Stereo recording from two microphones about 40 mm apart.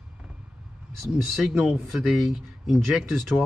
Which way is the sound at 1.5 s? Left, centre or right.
Right.